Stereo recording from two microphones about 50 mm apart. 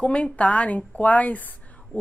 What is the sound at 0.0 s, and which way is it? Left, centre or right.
A woman's voice, left.